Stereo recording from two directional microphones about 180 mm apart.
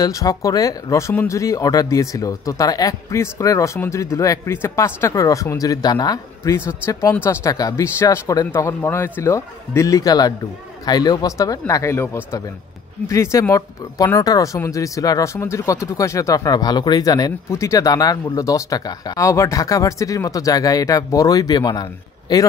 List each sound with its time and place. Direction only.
0.0 s speech: 20° left (ahead or behind)